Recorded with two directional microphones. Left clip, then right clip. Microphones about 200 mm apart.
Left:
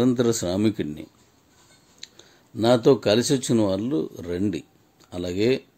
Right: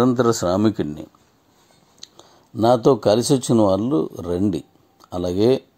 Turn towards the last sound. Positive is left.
turn(degrees=-20)  # may be behind; listen again after turning